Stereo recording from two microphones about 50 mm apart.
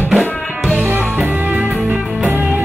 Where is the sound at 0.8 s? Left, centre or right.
Right.